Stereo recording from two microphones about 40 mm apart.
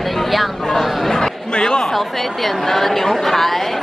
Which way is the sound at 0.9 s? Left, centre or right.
Centre.